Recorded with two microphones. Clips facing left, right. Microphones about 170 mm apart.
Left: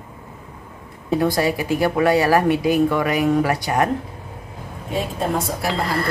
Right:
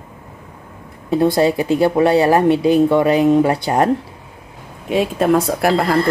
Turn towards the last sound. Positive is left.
turn(degrees=-55)  # may be behind; listen again after turning